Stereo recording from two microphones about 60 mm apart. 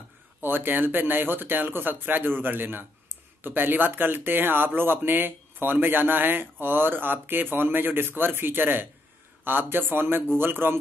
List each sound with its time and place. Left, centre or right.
0.4 s speech: right